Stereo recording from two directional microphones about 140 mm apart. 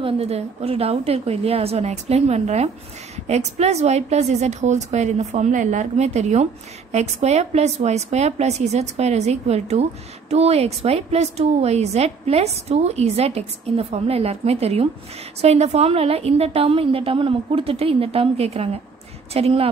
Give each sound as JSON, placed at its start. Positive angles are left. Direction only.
{"t": 0.0, "sound": "a woman's voice", "side_deg": -45}